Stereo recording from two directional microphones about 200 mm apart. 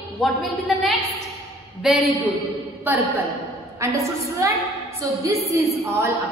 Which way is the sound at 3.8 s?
15° right (ahead or behind).